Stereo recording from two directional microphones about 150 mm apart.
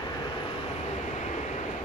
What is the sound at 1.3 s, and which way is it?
Vehicle, 50° left (ahead or behind).